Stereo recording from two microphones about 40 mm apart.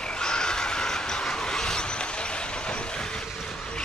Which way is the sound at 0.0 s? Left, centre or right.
Left.